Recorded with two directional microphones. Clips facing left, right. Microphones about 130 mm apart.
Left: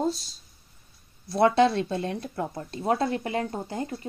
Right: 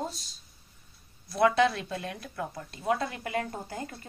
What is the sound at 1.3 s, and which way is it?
A woman's voice, 30° left (ahead or behind).